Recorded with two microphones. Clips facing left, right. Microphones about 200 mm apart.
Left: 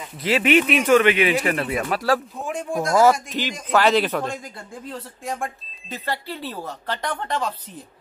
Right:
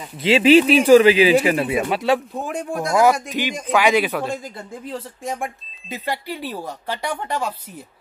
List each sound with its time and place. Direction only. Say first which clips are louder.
0.2 s a man's voice: right 6 dB; 30° right (ahead or behind)
1.4 s speech: right 4 dB; 5° right (ahead or behind)
1.9 s speech: even; 20° right (ahead or behind)
2.1 s speech: right 2 dB; centre (ahead or behind)
3.3 s speech: right 1 dB; 10° right (ahead or behind)
5.2 s speech: even; 15° right (ahead or behind)